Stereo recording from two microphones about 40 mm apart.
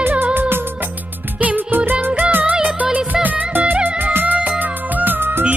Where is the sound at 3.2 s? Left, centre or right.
Right.